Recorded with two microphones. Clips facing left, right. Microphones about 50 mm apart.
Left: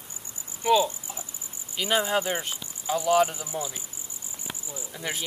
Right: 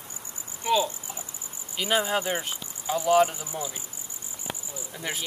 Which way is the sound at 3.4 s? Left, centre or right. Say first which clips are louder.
Left 1 dB; right.